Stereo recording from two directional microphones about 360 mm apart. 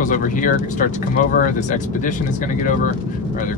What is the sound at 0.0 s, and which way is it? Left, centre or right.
Speech, left.